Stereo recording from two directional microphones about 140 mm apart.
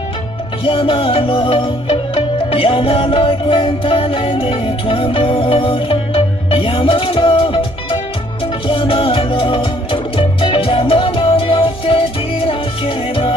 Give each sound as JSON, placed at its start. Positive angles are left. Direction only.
{"t": 0.7, "sound": "music", "side_deg": 40}